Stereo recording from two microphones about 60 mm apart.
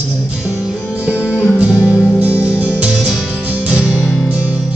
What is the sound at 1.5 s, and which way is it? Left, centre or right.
Music, right.